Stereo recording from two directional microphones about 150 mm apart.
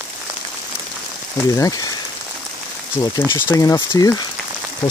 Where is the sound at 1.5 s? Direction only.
20° left (ahead or behind).